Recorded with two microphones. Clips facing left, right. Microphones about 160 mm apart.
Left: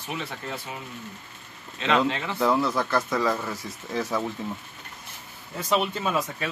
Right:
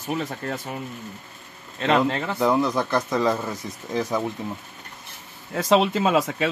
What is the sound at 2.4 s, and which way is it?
Speech, 15° right (ahead or behind).